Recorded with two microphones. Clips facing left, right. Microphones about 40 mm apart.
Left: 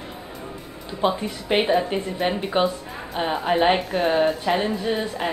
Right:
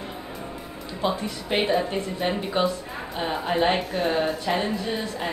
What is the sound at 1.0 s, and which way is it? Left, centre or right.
A woman's voice, centre.